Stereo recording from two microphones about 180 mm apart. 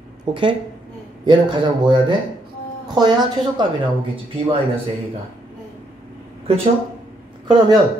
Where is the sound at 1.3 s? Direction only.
25° right (ahead or behind).